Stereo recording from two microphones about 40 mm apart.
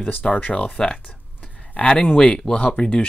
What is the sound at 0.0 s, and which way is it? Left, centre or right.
Speech, left.